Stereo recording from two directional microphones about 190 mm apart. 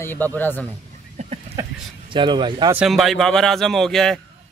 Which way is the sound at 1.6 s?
15° right (ahead or behind).